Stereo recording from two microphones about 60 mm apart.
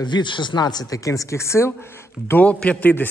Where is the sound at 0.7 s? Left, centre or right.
Left.